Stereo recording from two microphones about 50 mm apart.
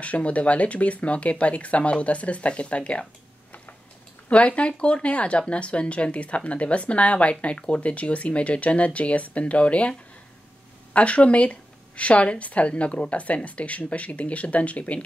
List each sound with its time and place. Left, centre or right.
0.0 s speech: left
4.3 s speech: left